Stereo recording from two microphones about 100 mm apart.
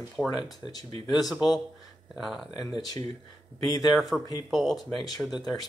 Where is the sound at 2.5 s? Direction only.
40° left (ahead or behind).